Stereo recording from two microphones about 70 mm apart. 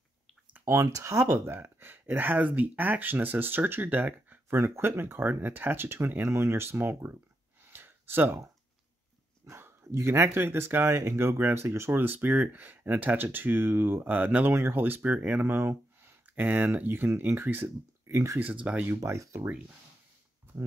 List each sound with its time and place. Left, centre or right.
0.7 s speech: right
7.6 s a sound: right
9.5 s speech: right
11.6 s speech: right
11.9 s speech: right
18.4 s speech: centre
19.0 s speech: right